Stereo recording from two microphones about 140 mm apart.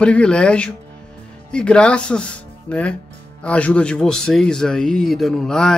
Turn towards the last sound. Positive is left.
turn(degrees=5)  # may be behind; listen again after turning